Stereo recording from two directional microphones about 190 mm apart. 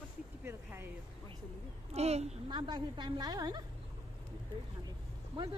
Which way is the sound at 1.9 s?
35° right (ahead or behind).